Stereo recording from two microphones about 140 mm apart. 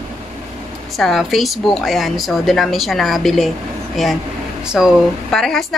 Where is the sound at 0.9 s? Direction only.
Centre (ahead or behind).